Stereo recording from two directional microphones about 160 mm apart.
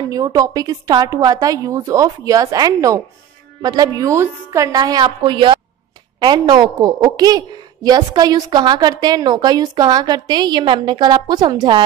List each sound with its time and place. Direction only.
0.1 s a woman's voice: 25° right (ahead or behind)